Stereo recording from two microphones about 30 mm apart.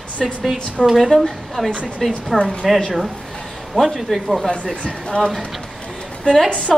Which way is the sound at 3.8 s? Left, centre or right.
Left.